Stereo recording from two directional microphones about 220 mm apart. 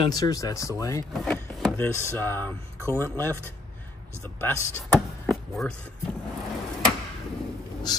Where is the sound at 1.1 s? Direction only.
Centre (ahead or behind).